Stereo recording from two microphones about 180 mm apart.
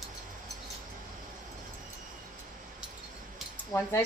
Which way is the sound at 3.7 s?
15° left (ahead or behind).